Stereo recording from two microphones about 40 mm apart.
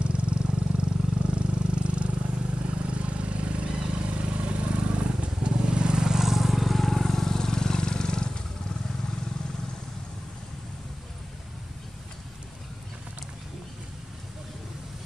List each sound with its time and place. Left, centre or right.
0.0 s vehicle: right; by 8.3 s centre